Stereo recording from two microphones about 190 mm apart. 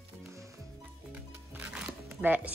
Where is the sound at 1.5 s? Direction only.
10° right (ahead or behind).